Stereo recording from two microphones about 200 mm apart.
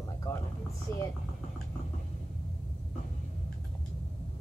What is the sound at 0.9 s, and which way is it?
Speech, 10° left (ahead or behind).